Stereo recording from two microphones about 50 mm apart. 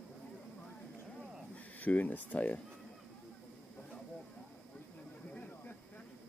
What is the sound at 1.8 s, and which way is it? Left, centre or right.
Speech, left.